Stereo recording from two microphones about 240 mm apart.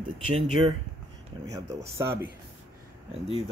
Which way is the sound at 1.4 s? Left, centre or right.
Centre.